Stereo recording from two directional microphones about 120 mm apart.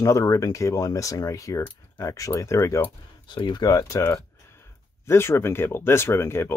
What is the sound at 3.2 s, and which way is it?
Speech, 40° left (ahead or behind).